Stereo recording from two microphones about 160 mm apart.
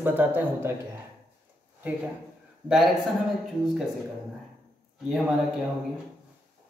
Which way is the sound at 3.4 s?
Centre (ahead or behind).